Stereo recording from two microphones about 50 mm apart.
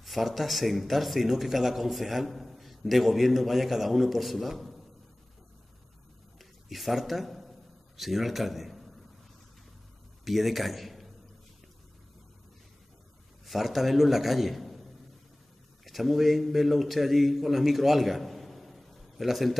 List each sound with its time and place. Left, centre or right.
0.0 s speech: centre
6.3 s a sound: centre
8.0 s a man's voice: centre
10.2 s speech: centre
13.5 s a man's voice: centre